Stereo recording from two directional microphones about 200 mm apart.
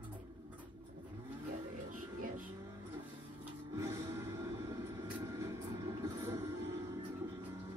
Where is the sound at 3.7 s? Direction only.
15° right (ahead or behind).